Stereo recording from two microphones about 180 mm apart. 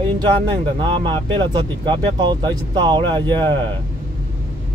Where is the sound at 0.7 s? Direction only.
30° right (ahead or behind).